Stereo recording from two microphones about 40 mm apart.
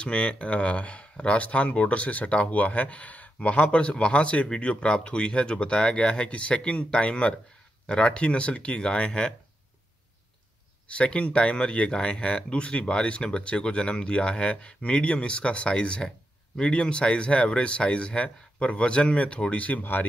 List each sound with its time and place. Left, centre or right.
0.0 s speech: left
10.9 s speech: left
19.8 s speech: left